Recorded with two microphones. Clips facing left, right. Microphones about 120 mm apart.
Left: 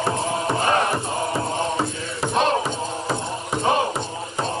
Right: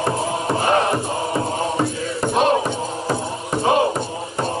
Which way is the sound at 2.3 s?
15° right (ahead or behind).